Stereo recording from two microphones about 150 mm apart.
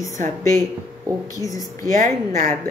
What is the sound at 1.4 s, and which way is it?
Music, 20° left (ahead or behind).